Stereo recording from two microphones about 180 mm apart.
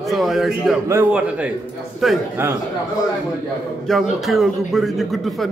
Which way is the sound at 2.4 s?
15° right (ahead or behind).